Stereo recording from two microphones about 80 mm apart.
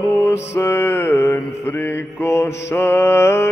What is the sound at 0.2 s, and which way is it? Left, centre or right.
Mantra, left.